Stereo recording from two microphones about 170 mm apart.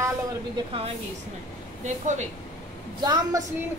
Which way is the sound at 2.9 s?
25° right (ahead or behind).